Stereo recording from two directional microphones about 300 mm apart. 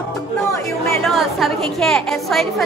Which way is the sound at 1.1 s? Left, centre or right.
Centre.